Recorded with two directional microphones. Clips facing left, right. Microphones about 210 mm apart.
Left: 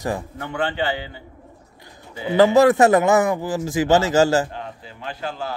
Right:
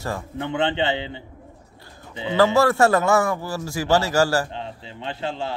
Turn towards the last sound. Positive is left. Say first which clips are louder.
# right 1 dB
turn(degrees=-25)  # may be behind; listen again after turning